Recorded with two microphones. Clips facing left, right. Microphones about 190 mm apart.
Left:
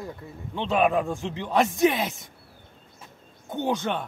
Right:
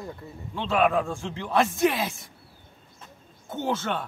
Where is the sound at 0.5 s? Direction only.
15° left (ahead or behind).